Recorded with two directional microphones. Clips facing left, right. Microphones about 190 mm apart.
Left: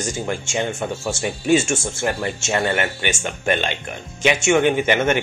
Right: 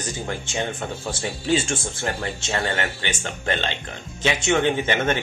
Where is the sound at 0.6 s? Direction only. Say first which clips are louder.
Left 3 dB; 25° left (ahead or behind).